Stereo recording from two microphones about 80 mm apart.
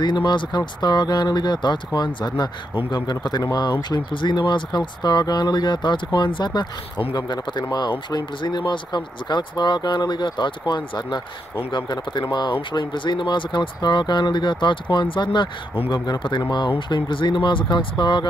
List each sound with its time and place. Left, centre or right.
0.0 s speech: left
12.7 s speech: left